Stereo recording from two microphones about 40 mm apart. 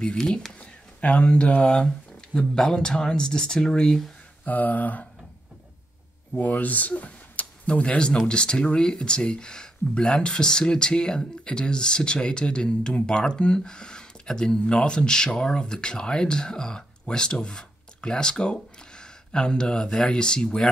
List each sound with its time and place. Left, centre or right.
0.6 s a sound: left
1.6 s speech: left
4.5 s speech: left
6.3 s speech: left; by 20.6 s centre